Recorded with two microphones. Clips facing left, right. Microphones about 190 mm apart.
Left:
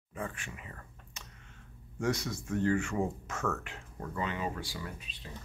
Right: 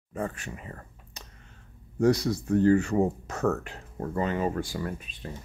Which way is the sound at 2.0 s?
35° right (ahead or behind).